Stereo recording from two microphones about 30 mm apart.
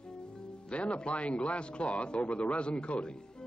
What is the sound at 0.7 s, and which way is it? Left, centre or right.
Speech, left.